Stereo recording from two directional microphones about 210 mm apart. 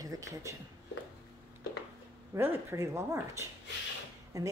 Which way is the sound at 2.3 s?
10° right (ahead or behind).